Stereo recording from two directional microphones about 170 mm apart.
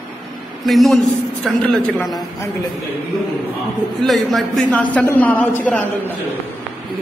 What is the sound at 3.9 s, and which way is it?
A man's voice, centre (ahead or behind).